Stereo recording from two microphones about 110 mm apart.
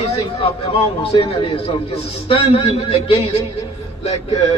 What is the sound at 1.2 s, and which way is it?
Speech, 55° left (ahead or behind).